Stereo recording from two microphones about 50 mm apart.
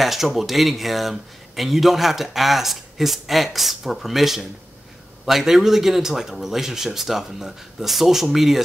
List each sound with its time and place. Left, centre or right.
0.0 s speech: centre